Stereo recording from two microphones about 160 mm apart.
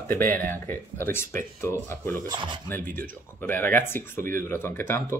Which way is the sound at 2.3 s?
30° right (ahead or behind).